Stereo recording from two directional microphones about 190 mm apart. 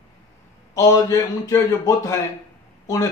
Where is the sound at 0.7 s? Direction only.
15° left (ahead or behind).